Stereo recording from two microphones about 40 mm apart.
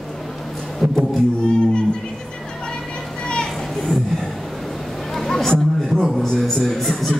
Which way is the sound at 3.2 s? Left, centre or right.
Left.